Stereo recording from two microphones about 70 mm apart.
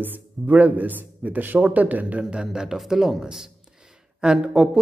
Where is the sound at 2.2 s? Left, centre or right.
Centre.